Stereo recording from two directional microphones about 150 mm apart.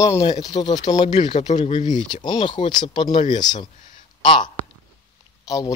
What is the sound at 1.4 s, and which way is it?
Speech, 50° left (ahead or behind).